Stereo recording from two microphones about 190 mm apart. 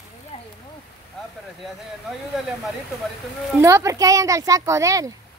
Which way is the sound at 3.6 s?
15° right (ahead or behind).